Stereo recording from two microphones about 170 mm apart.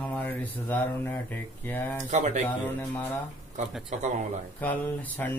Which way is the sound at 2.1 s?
40° right (ahead or behind).